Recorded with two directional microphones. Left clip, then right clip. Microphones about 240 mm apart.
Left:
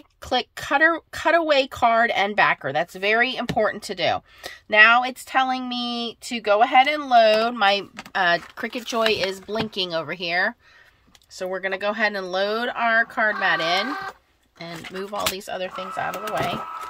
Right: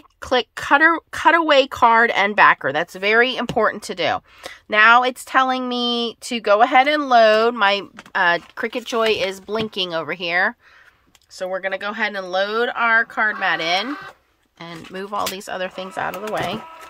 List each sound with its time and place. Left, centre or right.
0.2 s speech: centre